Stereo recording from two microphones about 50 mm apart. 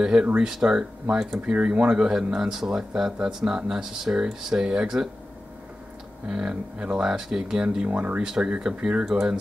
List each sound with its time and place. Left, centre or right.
0.0 s speech: centre
6.2 s speech: centre
7.9 s speech: right
8.2 s speech: centre